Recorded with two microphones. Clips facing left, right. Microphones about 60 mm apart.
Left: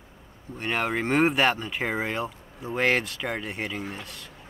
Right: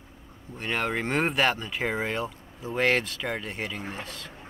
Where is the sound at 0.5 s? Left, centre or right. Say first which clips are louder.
Left 1 dB; centre.